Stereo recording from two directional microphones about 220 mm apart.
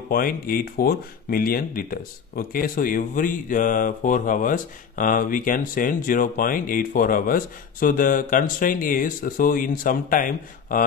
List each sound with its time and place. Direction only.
0.1 s speech: 40° left (ahead or behind)